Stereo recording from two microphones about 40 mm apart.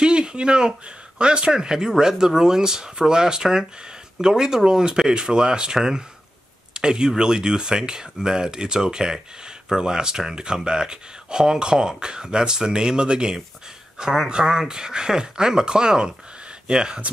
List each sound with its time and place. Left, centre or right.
0.0 s speech: right